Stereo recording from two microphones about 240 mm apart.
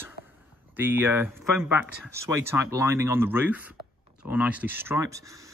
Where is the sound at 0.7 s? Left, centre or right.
Centre.